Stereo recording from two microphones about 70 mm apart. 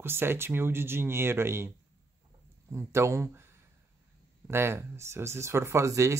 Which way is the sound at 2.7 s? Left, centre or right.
Right.